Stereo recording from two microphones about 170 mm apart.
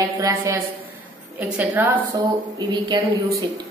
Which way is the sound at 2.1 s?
25° right (ahead or behind).